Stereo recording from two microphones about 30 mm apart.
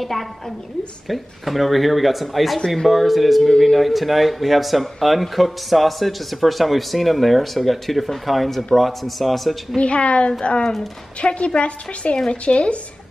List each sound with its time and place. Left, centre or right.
1.0 s speech: centre
3.4 s speech: centre
3.7 s speech: centre
9.8 s a woman's voice: left